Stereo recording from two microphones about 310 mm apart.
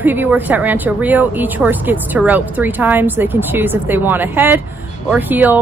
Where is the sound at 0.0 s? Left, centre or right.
Centre.